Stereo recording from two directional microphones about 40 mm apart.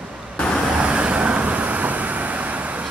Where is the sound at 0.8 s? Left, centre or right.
Right.